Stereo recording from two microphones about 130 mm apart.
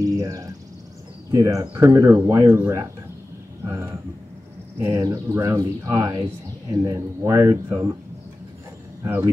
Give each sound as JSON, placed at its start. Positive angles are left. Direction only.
{"t": 0.0, "sound": "a sound", "side_deg": -25}
{"t": 1.3, "sound": "speech", "side_deg": -25}
{"t": 9.0, "sound": "speech", "side_deg": -20}